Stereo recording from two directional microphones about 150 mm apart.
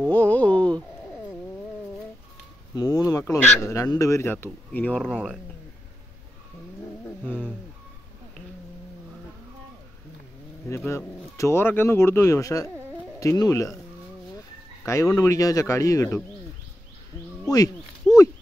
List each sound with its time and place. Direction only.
0.1 s speech: 10° left (ahead or behind)
2.7 s speech: 25° left (ahead or behind); by 5.1 s 5° left (ahead or behind)
5.1 s speech: 5° right (ahead or behind)
7.2 s a sound: 10° left (ahead or behind)
10.9 s speech: 20° left (ahead or behind)
14.9 s speech: 20° left (ahead or behind)
18.1 s a sound: centre (ahead or behind)